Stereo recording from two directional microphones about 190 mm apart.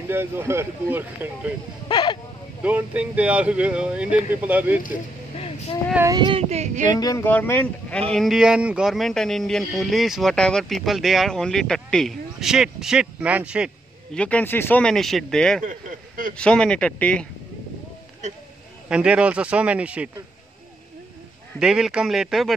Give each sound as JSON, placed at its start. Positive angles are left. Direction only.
{"t": 0.1, "sound": "speech", "side_deg": -10}
{"t": 1.9, "sound": "a sound", "side_deg": 25}
{"t": 2.6, "sound": "speech", "side_deg": -10}
{"t": 5.9, "sound": "speech", "side_deg": -20}
{"t": 6.9, "sound": "speech", "side_deg": 20}
{"t": 14.1, "sound": "speech", "side_deg": 5}
{"t": 15.6, "sound": "speech", "side_deg": -45}
{"t": 16.3, "sound": "speech", "side_deg": 5}
{"t": 18.9, "sound": "speech", "side_deg": -5}
{"t": 21.5, "sound": "speech", "side_deg": -5}